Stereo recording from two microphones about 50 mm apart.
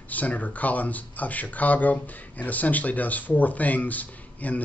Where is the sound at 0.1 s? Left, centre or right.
Left.